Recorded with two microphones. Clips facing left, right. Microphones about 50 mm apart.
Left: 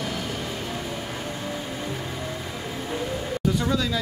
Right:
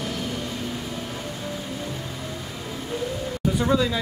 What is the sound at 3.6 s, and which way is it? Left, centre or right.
Speech, centre.